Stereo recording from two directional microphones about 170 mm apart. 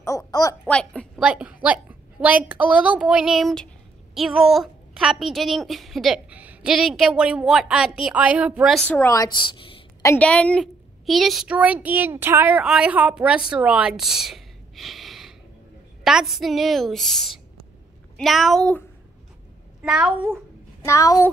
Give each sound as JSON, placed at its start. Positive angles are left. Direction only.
{"t": 0.3, "sound": "a sound", "side_deg": 20}
{"t": 0.7, "sound": "a sound", "side_deg": 5}
{"t": 1.2, "sound": "a woman's voice", "side_deg": -5}
{"t": 8.7, "sound": "a woman's voice", "side_deg": 10}
{"t": 10.0, "sound": "a woman's voice", "side_deg": 10}
{"t": 19.8, "sound": "a woman's voice", "side_deg": -5}
{"t": 20.8, "sound": "a woman's voice", "side_deg": 20}